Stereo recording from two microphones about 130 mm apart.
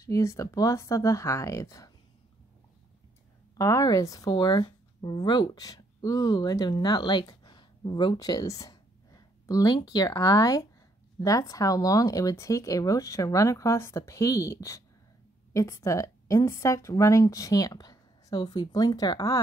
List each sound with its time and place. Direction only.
0.0 s a woman's voice: 25° left (ahead or behind)
3.5 s a woman's voice: 25° left (ahead or behind)